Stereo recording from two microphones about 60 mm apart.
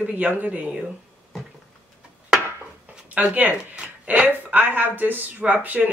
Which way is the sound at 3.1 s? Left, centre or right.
Right.